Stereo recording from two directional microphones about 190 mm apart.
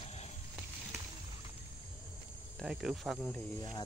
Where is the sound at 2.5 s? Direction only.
5° right (ahead or behind).